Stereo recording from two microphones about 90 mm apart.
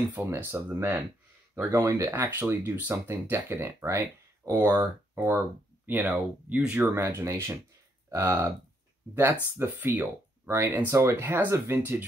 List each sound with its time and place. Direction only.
0.4 s speech: 25° right (ahead or behind)
7.0 s speech: 30° right (ahead or behind)